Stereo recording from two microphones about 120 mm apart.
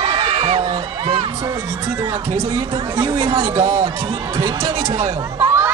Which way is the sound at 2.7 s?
45° right (ahead or behind).